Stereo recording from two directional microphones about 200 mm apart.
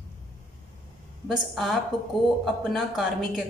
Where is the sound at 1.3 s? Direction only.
Centre (ahead or behind).